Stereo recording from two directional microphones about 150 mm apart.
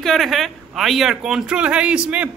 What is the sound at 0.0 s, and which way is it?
Speech, centre (ahead or behind).